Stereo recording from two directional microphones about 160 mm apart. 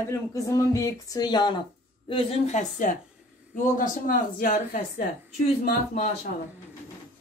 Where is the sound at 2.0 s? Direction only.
40° left (ahead or behind); by 5.0 s 60° left (ahead or behind).